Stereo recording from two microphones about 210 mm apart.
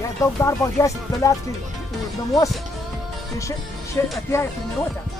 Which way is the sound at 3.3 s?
15° left (ahead or behind).